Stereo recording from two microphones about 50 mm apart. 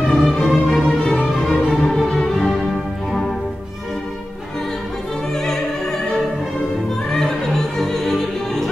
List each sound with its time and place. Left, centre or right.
0.1 s music: centre
5.3 s music: centre
7.1 s music: centre